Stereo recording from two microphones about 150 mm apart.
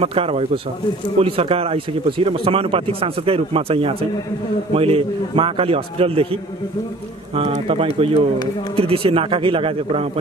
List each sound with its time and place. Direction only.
0.0 s speech: 40° right (ahead or behind)
7.3 s speech: 40° right (ahead or behind)